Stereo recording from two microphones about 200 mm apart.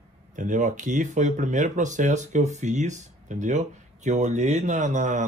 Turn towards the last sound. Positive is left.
turn(degrees=-40)  # may be behind; listen again after turning